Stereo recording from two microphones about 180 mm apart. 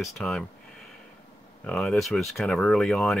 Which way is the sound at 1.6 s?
5° left (ahead or behind).